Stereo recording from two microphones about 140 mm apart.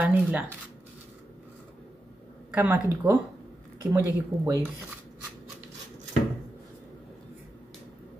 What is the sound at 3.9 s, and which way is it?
Speech, 20° right (ahead or behind).